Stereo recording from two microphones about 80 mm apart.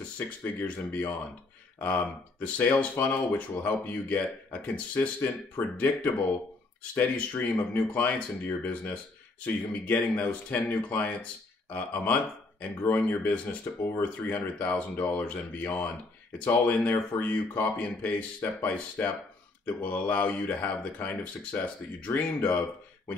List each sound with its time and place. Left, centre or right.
0.4 s speech: left